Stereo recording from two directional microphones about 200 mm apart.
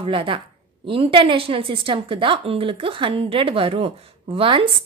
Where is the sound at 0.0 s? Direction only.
25° right (ahead or behind).